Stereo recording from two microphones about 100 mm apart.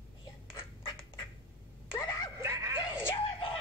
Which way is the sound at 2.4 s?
30° right (ahead or behind).